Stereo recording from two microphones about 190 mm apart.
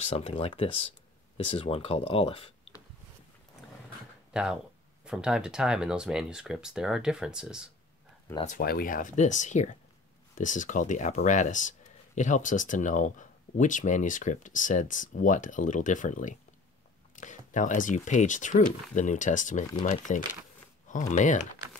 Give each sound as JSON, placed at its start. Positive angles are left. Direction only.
{"t": 0.0, "sound": "speech", "side_deg": 30}
{"t": 4.3, "sound": "speech", "side_deg": -5}
{"t": 8.5, "sound": "speech", "side_deg": 50}